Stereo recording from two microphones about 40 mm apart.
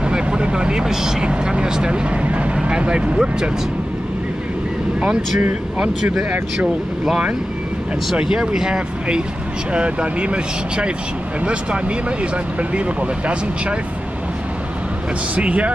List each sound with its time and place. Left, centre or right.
0.0 s vehicle: right
1.2 s speech: right
8.2 s speech: centre
9.7 s speech: right
15.3 s speech: right